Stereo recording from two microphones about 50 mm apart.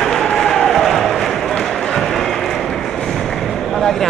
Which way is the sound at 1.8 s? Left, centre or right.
Centre.